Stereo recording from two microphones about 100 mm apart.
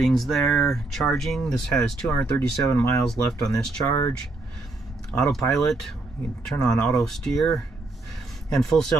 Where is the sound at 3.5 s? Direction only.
30° left (ahead or behind).